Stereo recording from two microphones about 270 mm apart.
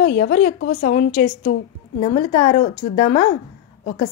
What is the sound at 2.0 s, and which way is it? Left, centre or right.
Speech, centre.